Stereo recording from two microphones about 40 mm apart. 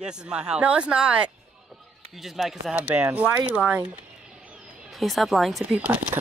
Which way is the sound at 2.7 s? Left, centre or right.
Right.